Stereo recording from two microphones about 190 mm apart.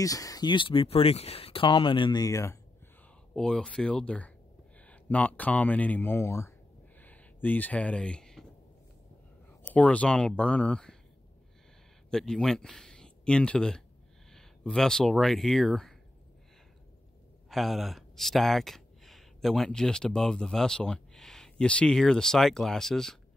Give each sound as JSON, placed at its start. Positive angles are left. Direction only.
{"t": 0.0, "sound": "speech", "side_deg": 20}
{"t": 3.3, "sound": "speech", "side_deg": 5}
{"t": 7.0, "sound": "a sound", "side_deg": 10}
{"t": 9.6, "sound": "speech", "side_deg": 5}
{"t": 12.1, "sound": "speech", "side_deg": 5}
{"t": 17.5, "sound": "speech", "side_deg": 0}